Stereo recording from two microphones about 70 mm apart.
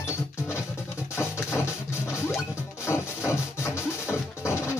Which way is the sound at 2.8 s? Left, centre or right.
Left.